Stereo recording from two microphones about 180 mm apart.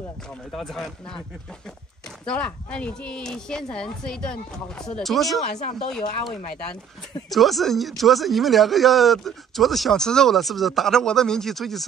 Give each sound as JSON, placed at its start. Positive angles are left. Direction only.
{"t": 0.5, "sound": "speech", "side_deg": 0}
{"t": 2.2, "sound": "speech", "side_deg": 5}
{"t": 5.4, "sound": "speech", "side_deg": 40}
{"t": 7.2, "sound": "speech", "side_deg": 0}